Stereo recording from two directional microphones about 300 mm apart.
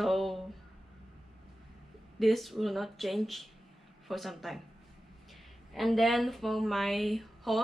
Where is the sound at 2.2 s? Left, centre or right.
Centre.